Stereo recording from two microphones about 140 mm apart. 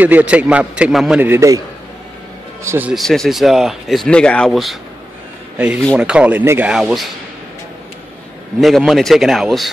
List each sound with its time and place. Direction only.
0.0 s a man's voice: 10° right (ahead or behind)
1.2 s a man's voice: 20° right (ahead or behind)
2.6 s a man's voice: 20° right (ahead or behind)
2.9 s speech: centre (ahead or behind)
5.9 s a man's voice: 5° right (ahead or behind)
6.7 s speech: 5° right (ahead or behind)
8.5 s speech: centre (ahead or behind)